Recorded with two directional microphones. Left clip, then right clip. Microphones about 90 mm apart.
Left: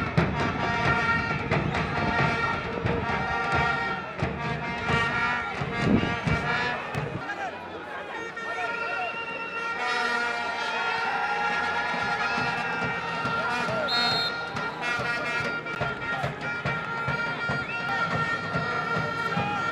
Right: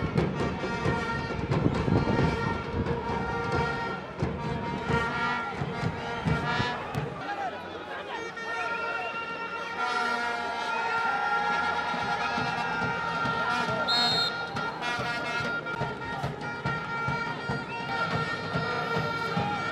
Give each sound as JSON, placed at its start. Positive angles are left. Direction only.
{"t": 0.1, "sound": "music", "side_deg": 35}
{"t": 4.8, "sound": "music", "side_deg": 20}
{"t": 5.1, "sound": "music", "side_deg": 5}
{"t": 5.8, "sound": "music", "side_deg": 15}
{"t": 6.4, "sound": "music", "side_deg": -5}
{"t": 9.8, "sound": "a sound", "side_deg": 10}
{"t": 13.8, "sound": "music", "side_deg": 0}
{"t": 16.6, "sound": "music", "side_deg": 20}
{"t": 17.9, "sound": "music", "side_deg": 0}